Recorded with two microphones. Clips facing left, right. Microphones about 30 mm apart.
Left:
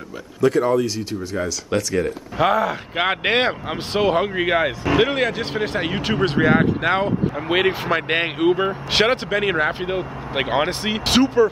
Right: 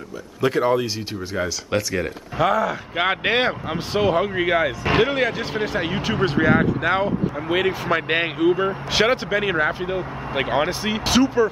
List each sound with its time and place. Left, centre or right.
0.4 s speech: right
2.4 s speech: centre
7.4 s speech: left
7.9 s speech: centre